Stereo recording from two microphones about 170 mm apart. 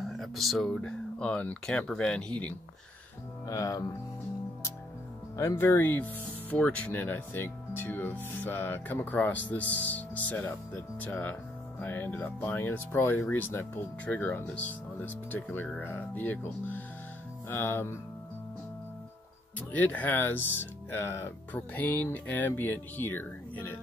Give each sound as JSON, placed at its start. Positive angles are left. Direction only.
{"t": 0.2, "sound": "speech", "side_deg": 0}
{"t": 3.4, "sound": "speech", "side_deg": 20}
{"t": 5.4, "sound": "speech", "side_deg": 15}
{"t": 19.7, "sound": "speech", "side_deg": 10}